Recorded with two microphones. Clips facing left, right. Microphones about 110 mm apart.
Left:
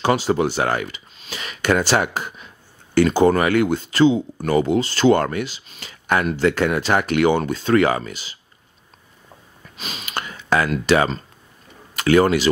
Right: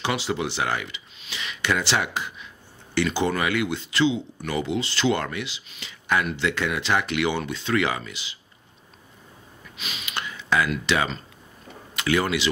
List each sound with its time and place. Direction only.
0.0 s speech: 45° left (ahead or behind)
9.8 s gasp: 40° left (ahead or behind)
11.9 s speech: 45° left (ahead or behind)